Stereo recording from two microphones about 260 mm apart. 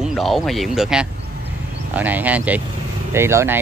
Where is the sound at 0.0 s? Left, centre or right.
Centre.